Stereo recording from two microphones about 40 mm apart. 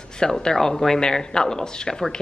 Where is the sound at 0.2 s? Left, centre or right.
Centre.